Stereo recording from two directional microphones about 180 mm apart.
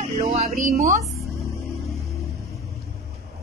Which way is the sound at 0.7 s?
50° right (ahead or behind).